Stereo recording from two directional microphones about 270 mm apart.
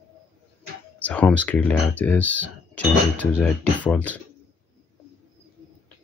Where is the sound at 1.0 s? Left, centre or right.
Centre.